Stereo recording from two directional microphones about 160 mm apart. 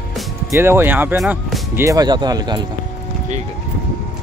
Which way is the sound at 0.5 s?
15° right (ahead or behind).